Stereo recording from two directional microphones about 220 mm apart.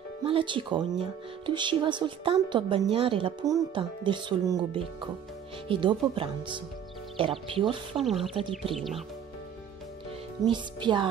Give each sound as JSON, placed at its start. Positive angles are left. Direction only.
{"t": 0.2, "sound": "a woman's voice", "side_deg": -25}
{"t": 8.0, "sound": "speech", "side_deg": 0}
{"t": 10.5, "sound": "a woman's voice", "side_deg": -20}